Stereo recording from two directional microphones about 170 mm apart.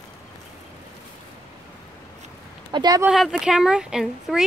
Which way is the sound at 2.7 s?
25° right (ahead or behind).